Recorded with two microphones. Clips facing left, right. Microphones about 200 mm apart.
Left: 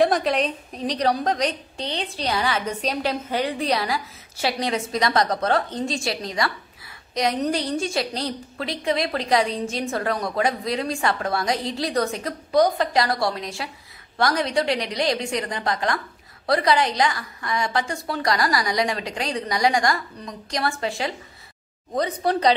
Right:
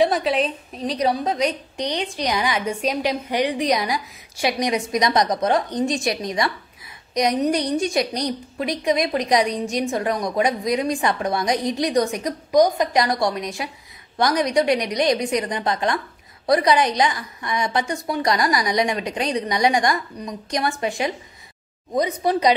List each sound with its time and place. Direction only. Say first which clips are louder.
0.0 s a woman's voice: right 1 dB; centre (ahead or behind)